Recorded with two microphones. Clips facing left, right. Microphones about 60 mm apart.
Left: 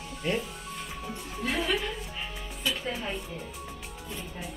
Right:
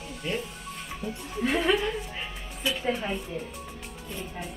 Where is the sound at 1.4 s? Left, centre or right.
Right.